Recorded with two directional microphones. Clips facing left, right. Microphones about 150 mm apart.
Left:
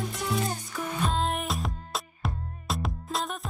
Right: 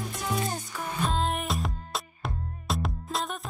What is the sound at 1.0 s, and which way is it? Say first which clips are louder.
Music: right 1 dB; centre (ahead or behind).